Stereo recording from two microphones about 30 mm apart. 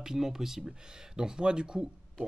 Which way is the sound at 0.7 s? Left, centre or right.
Right.